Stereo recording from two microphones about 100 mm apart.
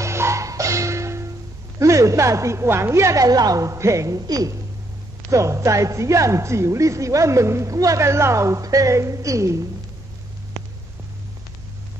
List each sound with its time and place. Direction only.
0.0 s music: 30° right (ahead or behind)
1.8 s a woman's voice: 30° right (ahead or behind)